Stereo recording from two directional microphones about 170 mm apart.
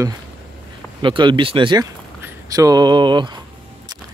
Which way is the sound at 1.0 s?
30° right (ahead or behind).